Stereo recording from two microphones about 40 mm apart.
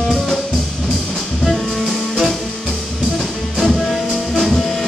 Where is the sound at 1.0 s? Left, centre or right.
Centre.